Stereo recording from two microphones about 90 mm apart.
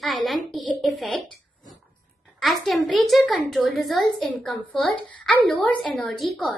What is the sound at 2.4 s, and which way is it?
Speech, centre (ahead or behind).